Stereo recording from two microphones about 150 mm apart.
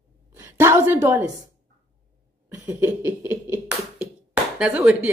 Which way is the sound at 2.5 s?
15° right (ahead or behind).